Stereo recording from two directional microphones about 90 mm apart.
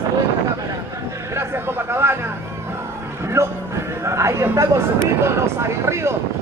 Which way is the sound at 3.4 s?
30° right (ahead or behind).